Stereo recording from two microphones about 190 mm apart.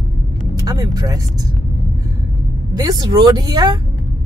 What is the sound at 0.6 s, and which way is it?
Speech, 20° right (ahead or behind).